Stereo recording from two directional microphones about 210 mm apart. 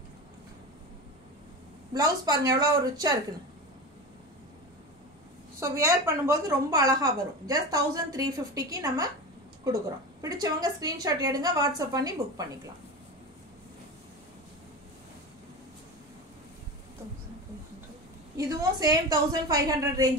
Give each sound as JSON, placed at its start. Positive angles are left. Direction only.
{"t": 2.0, "sound": "a woman's voice", "side_deg": -20}
{"t": 5.6, "sound": "a woman's voice", "side_deg": -15}
{"t": 18.4, "sound": "a woman's voice", "side_deg": -15}